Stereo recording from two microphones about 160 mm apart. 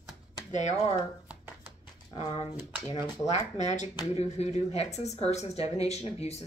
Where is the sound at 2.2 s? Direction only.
40° left (ahead or behind).